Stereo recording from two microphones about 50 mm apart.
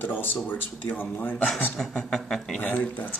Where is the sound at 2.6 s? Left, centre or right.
Left.